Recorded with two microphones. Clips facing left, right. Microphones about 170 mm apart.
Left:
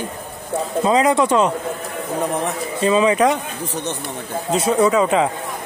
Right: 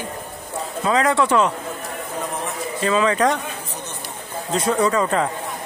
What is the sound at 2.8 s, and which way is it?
Speech, 15° left (ahead or behind).